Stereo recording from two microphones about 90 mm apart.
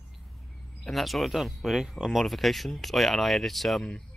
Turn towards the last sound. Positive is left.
turn(degrees=5)  # may be behind; listen again after turning